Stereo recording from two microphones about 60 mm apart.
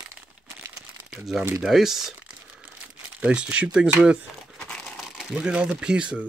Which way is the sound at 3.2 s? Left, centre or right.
Right.